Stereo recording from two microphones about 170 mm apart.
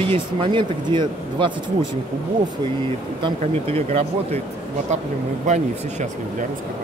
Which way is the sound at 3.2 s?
35° right (ahead or behind).